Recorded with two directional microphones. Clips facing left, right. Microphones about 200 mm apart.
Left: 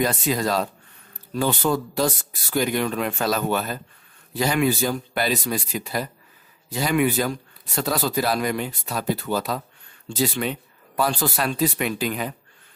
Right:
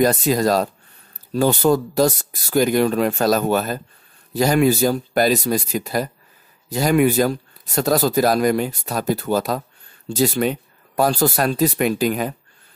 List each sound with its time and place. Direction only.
0.0 s speech: 40° right (ahead or behind)